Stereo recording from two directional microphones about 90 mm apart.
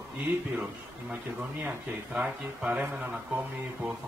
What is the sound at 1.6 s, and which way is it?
Speech, 10° right (ahead or behind).